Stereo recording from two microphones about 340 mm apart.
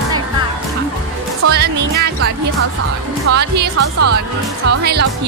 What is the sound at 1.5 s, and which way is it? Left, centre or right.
Music, right.